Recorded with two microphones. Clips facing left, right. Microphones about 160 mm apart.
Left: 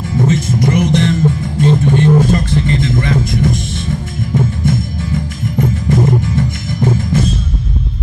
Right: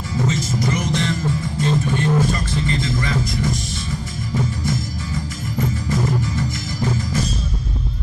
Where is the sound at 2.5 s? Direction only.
55° left (ahead or behind).